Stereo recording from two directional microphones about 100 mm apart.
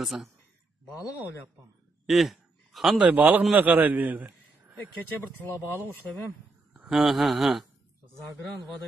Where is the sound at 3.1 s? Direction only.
15° right (ahead or behind).